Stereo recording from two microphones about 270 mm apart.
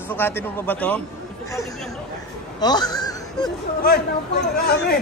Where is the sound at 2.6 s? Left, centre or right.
Centre.